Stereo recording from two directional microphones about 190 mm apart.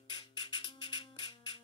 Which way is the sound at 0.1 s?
25° left (ahead or behind).